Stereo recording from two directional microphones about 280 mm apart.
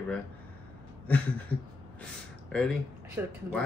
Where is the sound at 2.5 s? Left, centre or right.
Centre.